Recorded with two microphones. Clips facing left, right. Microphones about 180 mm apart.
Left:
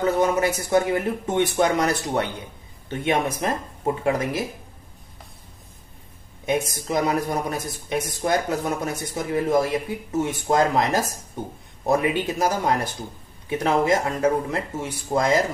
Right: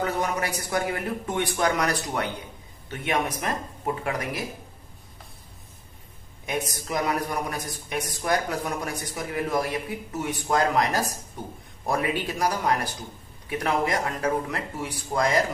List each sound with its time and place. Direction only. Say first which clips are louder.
0.0 s a man's voice: left 7 dB; 25° left (ahead or behind)
6.4 s a man's voice: left 6 dB; 25° left (ahead or behind)